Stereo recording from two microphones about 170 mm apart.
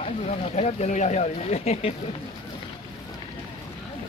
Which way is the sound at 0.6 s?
40° left (ahead or behind).